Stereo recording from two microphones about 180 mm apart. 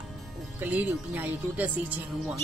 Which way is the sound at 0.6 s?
10° right (ahead or behind).